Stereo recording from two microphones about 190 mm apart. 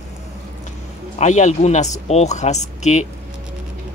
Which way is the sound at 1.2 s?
40° left (ahead or behind).